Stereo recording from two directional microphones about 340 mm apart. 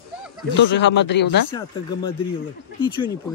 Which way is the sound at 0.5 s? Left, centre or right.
Left.